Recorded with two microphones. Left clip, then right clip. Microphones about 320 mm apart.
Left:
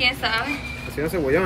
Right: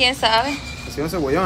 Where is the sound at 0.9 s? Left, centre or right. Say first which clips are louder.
Even; centre.